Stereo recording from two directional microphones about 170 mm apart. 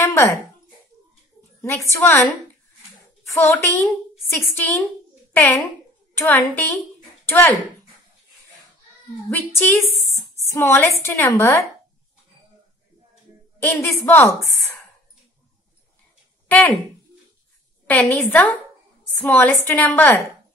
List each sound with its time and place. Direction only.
0.0 s a sound: 15° left (ahead or behind)
1.6 s a woman's voice: 15° left (ahead or behind)
3.4 s a woman's voice: 15° left (ahead or behind)
9.3 s a woman's voice: 15° left (ahead or behind)
13.6 s a woman's voice: 15° left (ahead or behind)
16.4 s a sound: 10° left (ahead or behind)
17.8 s a woman's voice: 10° left (ahead or behind)